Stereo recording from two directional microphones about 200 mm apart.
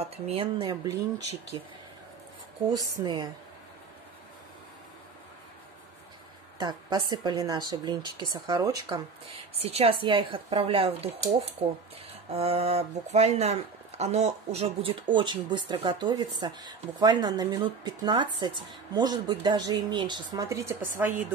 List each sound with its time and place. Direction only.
0.0 s speech: 30° right (ahead or behind)
3.0 s speech: 20° right (ahead or behind)
6.6 s speech: 20° right (ahead or behind)
12.3 s a woman's voice: 30° right (ahead or behind); by 21.1 s 10° right (ahead or behind)